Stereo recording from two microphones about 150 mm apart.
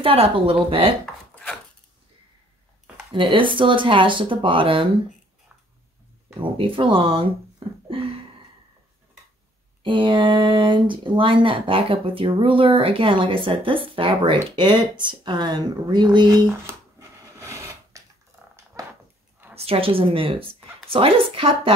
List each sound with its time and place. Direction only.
0.0 s speech: 40° right (ahead or behind)
1.3 s chopping: 10° left (ahead or behind)
3.1 s speech: 35° right (ahead or behind)
6.4 s speech: 35° right (ahead or behind)
9.8 s speech: 35° right (ahead or behind)
17.4 s filing: 20° right (ahead or behind)
18.8 s a sound: 20° right (ahead or behind)
19.5 s speech: 40° right (ahead or behind)